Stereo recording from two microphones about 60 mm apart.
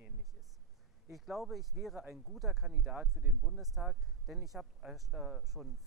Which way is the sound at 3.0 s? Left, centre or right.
Right.